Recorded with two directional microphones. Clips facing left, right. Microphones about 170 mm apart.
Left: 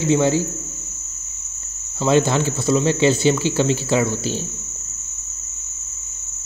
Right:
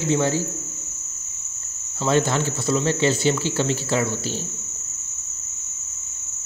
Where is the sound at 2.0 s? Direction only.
15° left (ahead or behind).